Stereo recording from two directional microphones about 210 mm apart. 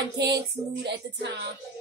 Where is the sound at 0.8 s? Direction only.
55° right (ahead or behind).